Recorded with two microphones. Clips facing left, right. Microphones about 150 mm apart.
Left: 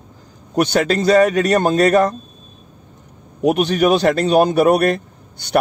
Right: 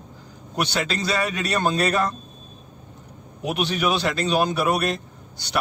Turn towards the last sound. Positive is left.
turn(degrees=55)  # may be behind; listen again after turning